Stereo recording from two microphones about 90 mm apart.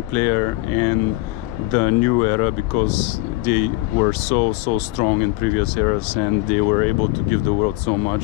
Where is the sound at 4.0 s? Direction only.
60° left (ahead or behind).